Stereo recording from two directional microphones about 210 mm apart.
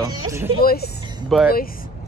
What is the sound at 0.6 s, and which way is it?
Speech, 45° left (ahead or behind).